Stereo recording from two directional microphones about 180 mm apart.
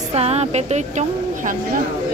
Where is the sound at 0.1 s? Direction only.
35° right (ahead or behind).